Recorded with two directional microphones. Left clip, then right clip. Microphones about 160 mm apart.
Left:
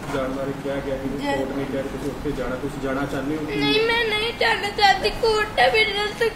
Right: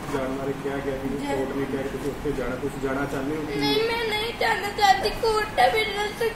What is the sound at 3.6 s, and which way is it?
Speech, 30° left (ahead or behind).